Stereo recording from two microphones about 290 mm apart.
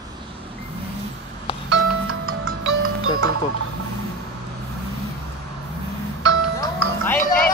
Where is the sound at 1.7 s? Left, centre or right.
Right.